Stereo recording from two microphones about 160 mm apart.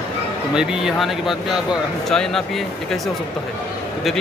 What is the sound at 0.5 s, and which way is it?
Speech, 5° right (ahead or behind).